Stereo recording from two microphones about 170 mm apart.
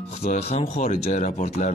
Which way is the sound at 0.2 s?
40° left (ahead or behind).